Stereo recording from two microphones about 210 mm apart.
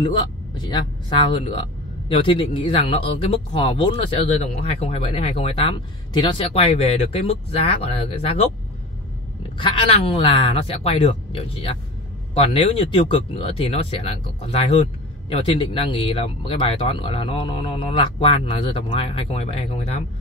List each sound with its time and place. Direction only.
0.0 s speech: 20° left (ahead or behind)
9.6 s speech: 25° left (ahead or behind)